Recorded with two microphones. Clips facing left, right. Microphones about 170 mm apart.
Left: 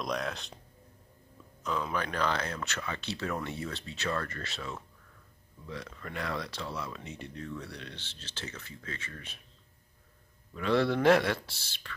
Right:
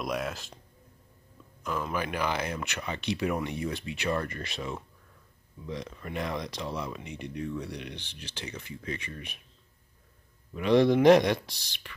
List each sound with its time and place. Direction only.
0.0 s speech: 5° right (ahead or behind)
1.6 s speech: 5° right (ahead or behind)
10.5 s speech: 15° right (ahead or behind)